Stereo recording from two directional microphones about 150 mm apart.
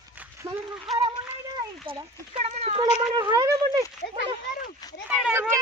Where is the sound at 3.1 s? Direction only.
25° right (ahead or behind).